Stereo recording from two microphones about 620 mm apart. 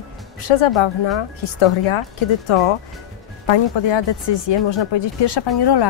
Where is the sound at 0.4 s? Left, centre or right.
Left.